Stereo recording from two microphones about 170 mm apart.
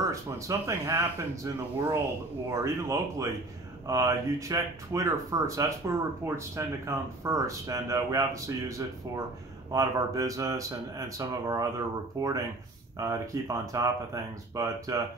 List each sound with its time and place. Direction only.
0.1 s speech: 20° right (ahead or behind)